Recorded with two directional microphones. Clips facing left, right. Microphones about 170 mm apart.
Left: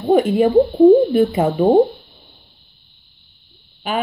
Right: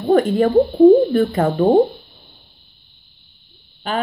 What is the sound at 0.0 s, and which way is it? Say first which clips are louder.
Speech: left 1 dB; 5° left (ahead or behind).